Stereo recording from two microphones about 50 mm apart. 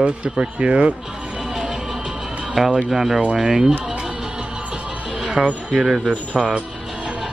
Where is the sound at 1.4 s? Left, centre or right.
Centre.